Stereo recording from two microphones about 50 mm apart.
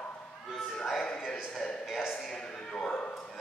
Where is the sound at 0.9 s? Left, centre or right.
Centre.